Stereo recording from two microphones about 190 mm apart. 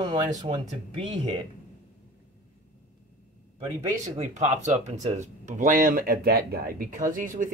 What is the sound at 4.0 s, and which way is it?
Speech, 40° right (ahead or behind).